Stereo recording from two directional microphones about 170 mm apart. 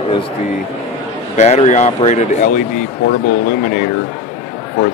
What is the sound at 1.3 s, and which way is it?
Speech, 40° left (ahead or behind).